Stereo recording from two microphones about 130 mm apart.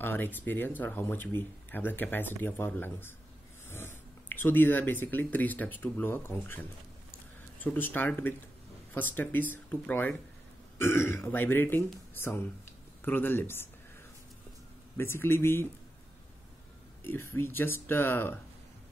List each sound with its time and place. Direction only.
0.0 s speech: 15° left (ahead or behind)
15.0 s a man's voice: 20° left (ahead or behind)
17.0 s speech: 15° left (ahead or behind)